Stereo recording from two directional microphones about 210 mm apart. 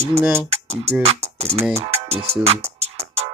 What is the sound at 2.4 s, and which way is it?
Music, 30° right (ahead or behind).